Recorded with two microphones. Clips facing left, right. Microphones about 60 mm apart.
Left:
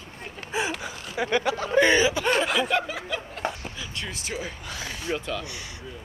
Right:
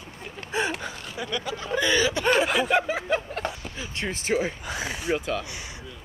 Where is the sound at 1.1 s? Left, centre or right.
Left.